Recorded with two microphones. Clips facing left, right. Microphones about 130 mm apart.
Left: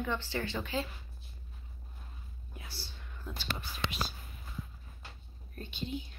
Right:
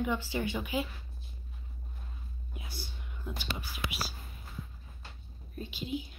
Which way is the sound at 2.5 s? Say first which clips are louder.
Right 3 dB; 15° right (ahead or behind).